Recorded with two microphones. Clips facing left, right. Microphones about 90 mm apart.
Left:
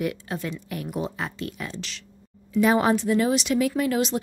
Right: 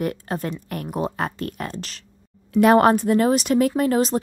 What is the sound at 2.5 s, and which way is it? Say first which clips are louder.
A woman's voice: right 5 dB; 60° right (ahead or behind).